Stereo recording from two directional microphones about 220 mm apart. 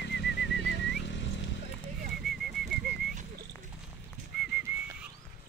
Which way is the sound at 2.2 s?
Centre (ahead or behind).